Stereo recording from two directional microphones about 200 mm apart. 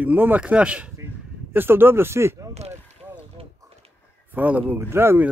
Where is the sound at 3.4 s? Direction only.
30° right (ahead or behind).